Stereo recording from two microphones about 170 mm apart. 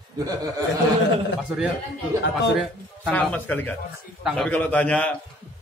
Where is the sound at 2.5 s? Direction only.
Centre (ahead or behind).